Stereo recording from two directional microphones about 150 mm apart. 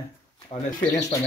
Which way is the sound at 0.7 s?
50° left (ahead or behind).